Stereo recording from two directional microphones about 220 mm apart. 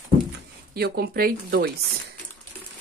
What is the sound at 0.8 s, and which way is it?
Speech, 45° right (ahead or behind).